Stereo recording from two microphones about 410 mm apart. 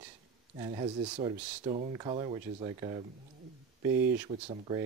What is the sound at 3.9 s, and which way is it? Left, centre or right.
Speech, right.